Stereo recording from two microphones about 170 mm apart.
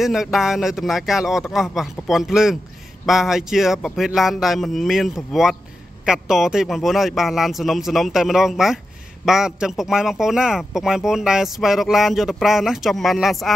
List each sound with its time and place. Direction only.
0.0 s a man's voice: centre (ahead or behind)